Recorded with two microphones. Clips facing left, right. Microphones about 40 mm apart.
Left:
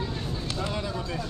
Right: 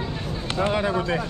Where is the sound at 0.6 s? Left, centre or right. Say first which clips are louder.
Right 12 dB; right.